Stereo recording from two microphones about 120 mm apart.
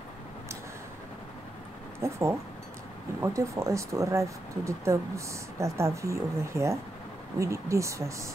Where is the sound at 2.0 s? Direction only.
25° right (ahead or behind).